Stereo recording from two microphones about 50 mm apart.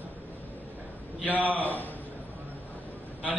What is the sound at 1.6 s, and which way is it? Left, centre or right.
Speech, left.